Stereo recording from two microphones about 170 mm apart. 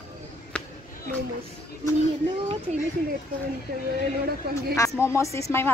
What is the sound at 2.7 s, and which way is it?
Speech, 45° right (ahead or behind).